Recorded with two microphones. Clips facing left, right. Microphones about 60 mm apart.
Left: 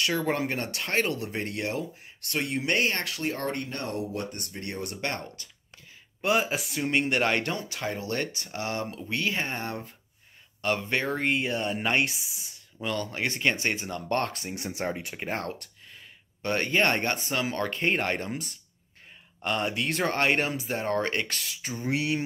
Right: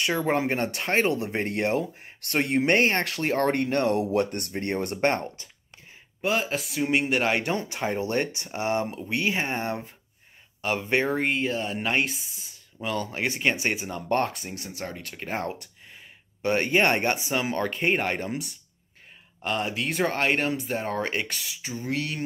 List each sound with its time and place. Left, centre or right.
0.0 s speech: right
4.0 s speech: right
4.3 s speech: right
6.2 s speech: centre
7.5 s speech: right
11.1 s speech: centre
14.5 s speech: left
15.4 s a sound: centre
16.4 s speech: centre
21.7 s speech: centre